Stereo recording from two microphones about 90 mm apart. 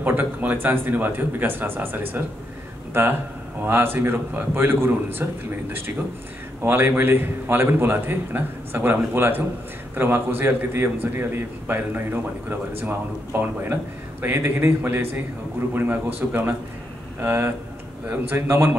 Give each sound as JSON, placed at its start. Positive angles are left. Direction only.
{"t": 0.0, "sound": "a man's voice", "side_deg": -20}